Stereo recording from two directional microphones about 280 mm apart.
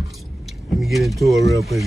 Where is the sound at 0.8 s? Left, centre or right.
Centre.